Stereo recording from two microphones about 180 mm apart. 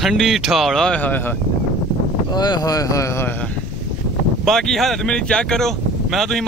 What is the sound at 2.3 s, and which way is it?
Speech, 20° left (ahead or behind).